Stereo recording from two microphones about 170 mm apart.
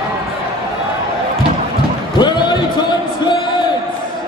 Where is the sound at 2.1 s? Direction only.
25° left (ahead or behind).